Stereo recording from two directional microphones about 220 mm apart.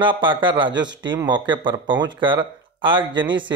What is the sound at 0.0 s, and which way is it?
Speech, 20° right (ahead or behind).